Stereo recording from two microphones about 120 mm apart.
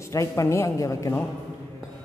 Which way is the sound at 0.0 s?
25° left (ahead or behind).